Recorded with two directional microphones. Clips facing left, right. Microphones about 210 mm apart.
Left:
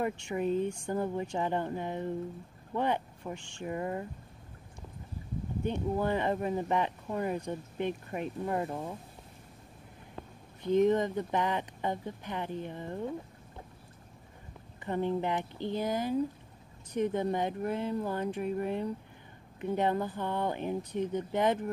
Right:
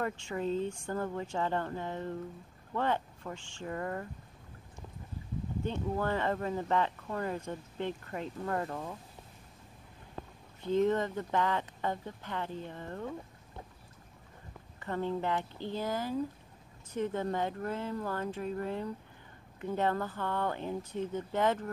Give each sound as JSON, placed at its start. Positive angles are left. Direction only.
{"t": 0.0, "sound": "speech", "side_deg": 15}
{"t": 5.6, "sound": "speech", "side_deg": 15}
{"t": 10.6, "sound": "speech", "side_deg": 15}
{"t": 14.9, "sound": "speech", "side_deg": 20}